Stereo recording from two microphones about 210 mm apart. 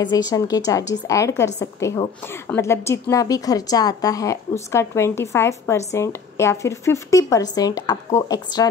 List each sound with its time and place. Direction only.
0.0 s a woman's voice: 20° left (ahead or behind)